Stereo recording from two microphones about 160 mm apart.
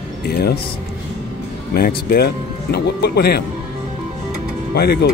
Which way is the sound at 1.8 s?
75° left (ahead or behind).